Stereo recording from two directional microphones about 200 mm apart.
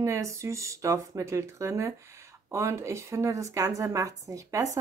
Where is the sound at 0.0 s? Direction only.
15° right (ahead or behind).